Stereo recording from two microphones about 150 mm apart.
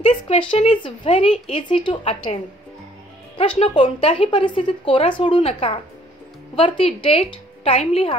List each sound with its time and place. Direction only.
0.0 s speech: 35° left (ahead or behind)
3.3 s speech: 40° left (ahead or behind)